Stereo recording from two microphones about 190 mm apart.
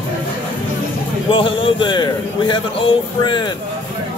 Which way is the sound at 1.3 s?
25° left (ahead or behind).